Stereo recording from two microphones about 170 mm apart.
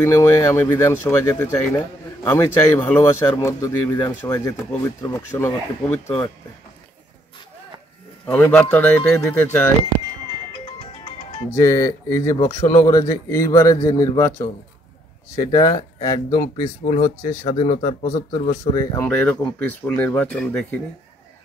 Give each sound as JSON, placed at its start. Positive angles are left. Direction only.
{"t": 0.0, "sound": "speech", "side_deg": 15}
{"t": 8.3, "sound": "speech", "side_deg": 10}
{"t": 11.5, "sound": "speech", "side_deg": 20}
{"t": 18.4, "sound": "speech", "side_deg": 45}
{"t": 18.7, "sound": "speech", "side_deg": 20}
{"t": 19.0, "sound": "speech", "side_deg": 10}